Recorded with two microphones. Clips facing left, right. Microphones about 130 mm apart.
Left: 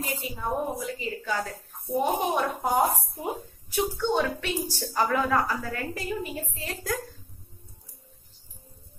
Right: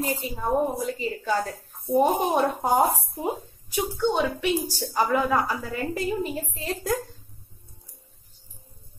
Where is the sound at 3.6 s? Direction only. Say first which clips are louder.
Right 2 dB; 15° right (ahead or behind).